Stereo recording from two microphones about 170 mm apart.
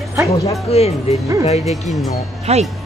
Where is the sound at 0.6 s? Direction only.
35° left (ahead or behind).